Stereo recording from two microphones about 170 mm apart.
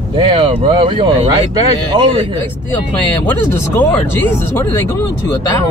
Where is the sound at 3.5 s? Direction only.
10° left (ahead or behind).